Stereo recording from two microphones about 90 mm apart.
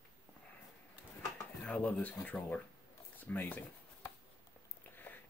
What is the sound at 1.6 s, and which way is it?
Speech, 10° left (ahead or behind).